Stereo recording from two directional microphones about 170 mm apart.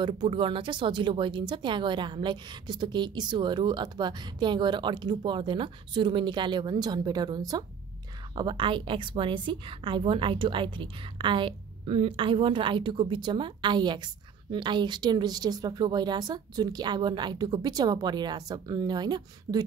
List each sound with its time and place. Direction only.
0.0 s a woman's voice: 30° right (ahead or behind)